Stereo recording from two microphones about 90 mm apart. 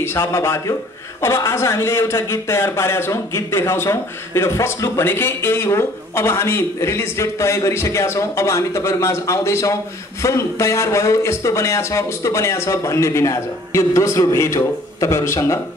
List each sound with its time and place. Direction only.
0.0 s a man's voice: 30° left (ahead or behind)